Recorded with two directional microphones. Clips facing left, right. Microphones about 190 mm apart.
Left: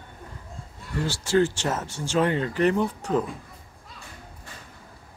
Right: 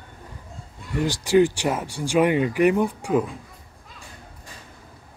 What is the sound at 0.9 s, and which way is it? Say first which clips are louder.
Speech: right 4 dB; 15° right (ahead or behind).